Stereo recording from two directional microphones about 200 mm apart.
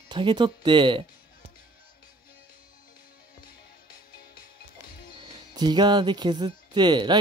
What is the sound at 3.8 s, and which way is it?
Music, 50° left (ahead or behind).